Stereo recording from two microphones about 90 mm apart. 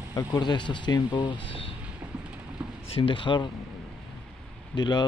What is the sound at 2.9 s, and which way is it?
Speech, 80° left.